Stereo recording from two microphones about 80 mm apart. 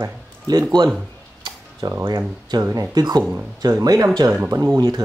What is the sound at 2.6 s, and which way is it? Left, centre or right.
Speech, right.